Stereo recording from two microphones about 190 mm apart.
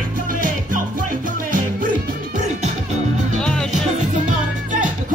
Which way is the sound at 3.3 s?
5° left (ahead or behind).